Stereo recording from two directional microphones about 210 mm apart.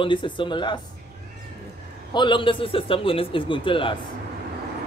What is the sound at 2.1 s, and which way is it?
Speech, 20° left (ahead or behind).